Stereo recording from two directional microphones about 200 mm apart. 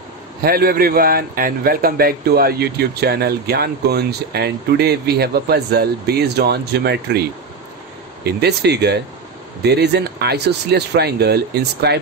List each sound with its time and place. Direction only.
0.4 s a man's voice: 50° right (ahead or behind)